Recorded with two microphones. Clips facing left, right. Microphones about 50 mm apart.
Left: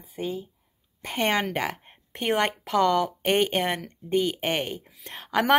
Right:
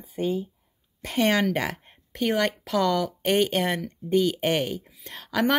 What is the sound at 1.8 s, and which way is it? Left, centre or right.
A woman's voice, left.